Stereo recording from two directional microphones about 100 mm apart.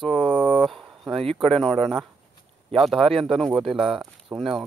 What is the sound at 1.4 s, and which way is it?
Speech, 5° left (ahead or behind).